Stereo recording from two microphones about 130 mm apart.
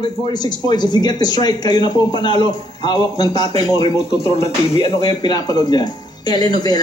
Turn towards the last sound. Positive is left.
turn(degrees=30)  # may be behind; listen again after turning